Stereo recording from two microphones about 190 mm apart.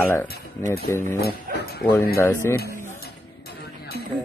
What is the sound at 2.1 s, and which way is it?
Speech, 15° left (ahead or behind).